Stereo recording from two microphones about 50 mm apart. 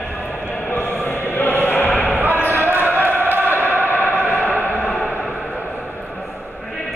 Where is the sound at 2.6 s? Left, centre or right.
Right.